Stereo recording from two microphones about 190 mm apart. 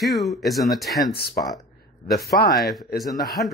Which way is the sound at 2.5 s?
Centre (ahead or behind).